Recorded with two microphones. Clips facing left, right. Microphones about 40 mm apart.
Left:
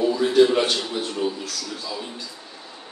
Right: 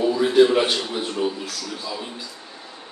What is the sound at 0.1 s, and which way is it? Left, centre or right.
A man's voice, centre.